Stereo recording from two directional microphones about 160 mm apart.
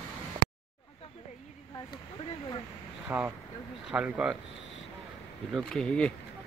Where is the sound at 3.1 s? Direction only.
10° right (ahead or behind).